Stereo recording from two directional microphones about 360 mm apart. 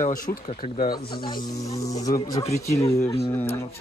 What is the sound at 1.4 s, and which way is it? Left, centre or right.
Speech, centre.